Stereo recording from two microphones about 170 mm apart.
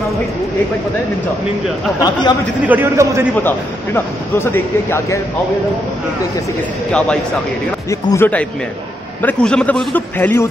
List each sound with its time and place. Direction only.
2.0 s speech: 25° left (ahead or behind)
2.6 s a man's voice: 10° right (ahead or behind)
3.4 s a man's voice: 10° left (ahead or behind)
7.9 s speech: 20° left (ahead or behind)
9.2 s a man's voice: 5° left (ahead or behind)